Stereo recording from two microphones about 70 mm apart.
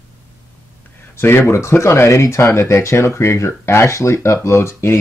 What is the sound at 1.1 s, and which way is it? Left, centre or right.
Speech, left.